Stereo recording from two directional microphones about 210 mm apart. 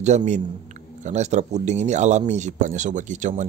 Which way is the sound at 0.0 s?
35° right (ahead or behind).